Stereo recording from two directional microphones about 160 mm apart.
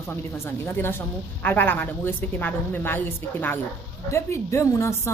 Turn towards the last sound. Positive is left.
turn(degrees=15)  # may be behind; listen again after turning